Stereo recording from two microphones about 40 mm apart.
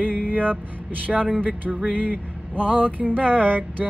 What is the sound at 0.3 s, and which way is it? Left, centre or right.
Music, right.